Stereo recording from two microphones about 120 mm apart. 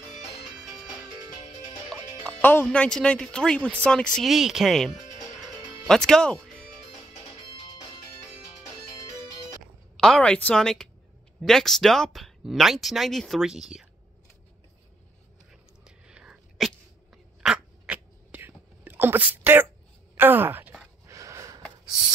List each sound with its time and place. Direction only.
0.5 s music: 5° right (ahead or behind)
2.2 s speech: 10° left (ahead or behind)
9.9 s a woman's voice: 5° left (ahead or behind)
15.8 s sneeze: 5° right (ahead or behind)
17.4 s a sound: 5° right (ahead or behind)
20.2 s groan: 15° right (ahead or behind)
21.1 s a sound: 25° right (ahead or behind)